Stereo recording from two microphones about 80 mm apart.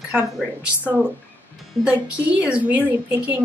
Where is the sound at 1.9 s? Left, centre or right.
Centre.